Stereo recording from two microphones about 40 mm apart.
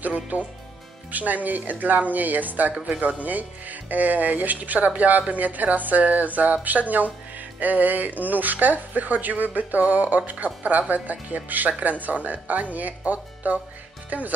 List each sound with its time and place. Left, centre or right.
0.0 s speech: right